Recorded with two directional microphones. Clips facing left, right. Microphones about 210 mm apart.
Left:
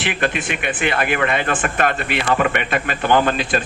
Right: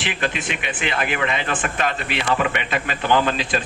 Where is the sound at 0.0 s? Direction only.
55° left (ahead or behind).